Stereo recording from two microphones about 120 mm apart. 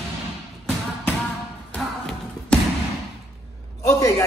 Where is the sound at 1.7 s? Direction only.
5° left (ahead or behind).